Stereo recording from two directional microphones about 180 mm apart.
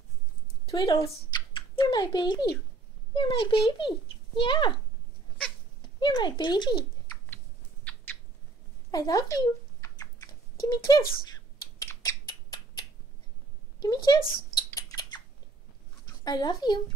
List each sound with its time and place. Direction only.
0.7 s a child's voice: 25° left (ahead or behind)
5.8 s speech: 25° left (ahead or behind)
7.9 s rodents: 10° left (ahead or behind)
8.9 s typing: 20° left (ahead or behind)
10.7 s a child's voice: 20° left (ahead or behind)
11.8 s a sound: 15° left (ahead or behind)
14.0 s speech: 25° left (ahead or behind)
14.7 s a sound: 20° left (ahead or behind)
16.3 s a child's voice: 25° left (ahead or behind)